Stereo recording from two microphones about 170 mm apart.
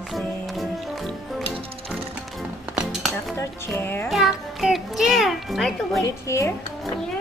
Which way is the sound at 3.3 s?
15° left (ahead or behind).